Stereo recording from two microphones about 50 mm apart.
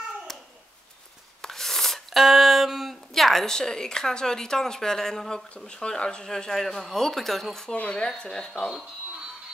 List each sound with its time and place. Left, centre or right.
1.4 s a sound: centre
3.5 s speech: centre
5.7 s speech: centre
7.7 s speech: left